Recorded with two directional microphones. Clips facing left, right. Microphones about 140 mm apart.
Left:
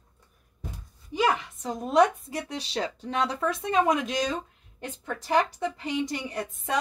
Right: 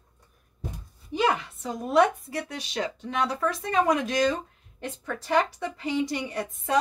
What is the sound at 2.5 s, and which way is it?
Speech, 30° left (ahead or behind).